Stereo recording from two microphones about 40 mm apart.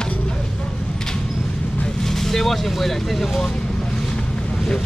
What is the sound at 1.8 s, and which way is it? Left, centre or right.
Speech, centre.